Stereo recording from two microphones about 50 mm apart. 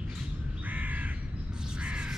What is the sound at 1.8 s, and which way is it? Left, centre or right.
Crow, right.